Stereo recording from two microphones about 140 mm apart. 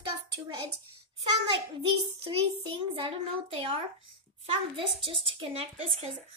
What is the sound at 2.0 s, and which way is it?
Speech, 35° right (ahead or behind).